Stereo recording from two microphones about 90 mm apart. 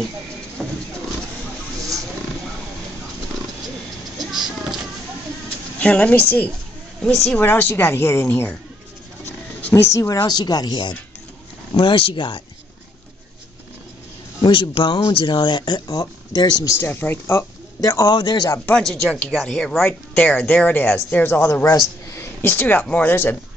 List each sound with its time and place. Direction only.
0.6 s a sound: centre (ahead or behind)
1.8 s wild animals: 40° right (ahead or behind)
4.2 s music: 5° right (ahead or behind)
5.8 s a woman's voice: 15° left (ahead or behind)
7.0 s a woman's voice: 5° left (ahead or behind)
7.3 s speech: 25° left (ahead or behind)
9.8 s a woman's voice: 35° left (ahead or behind)
10.2 s speech: 50° left (ahead or behind)
11.7 s speech: 75° left (ahead or behind)
14.4 s speech: 80° left
15.0 s speech: 60° left (ahead or behind)
16.6 s speech: 25° left (ahead or behind)
18.1 s speech: 50° left (ahead or behind)
18.7 s speech: 5° left (ahead or behind); by 23.3 s 25° left (ahead or behind)